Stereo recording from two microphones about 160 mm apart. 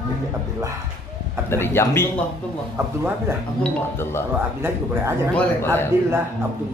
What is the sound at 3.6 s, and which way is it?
Speech, 15° left (ahead or behind).